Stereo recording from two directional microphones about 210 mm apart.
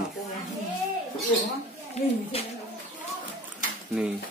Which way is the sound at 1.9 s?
30° left (ahead or behind).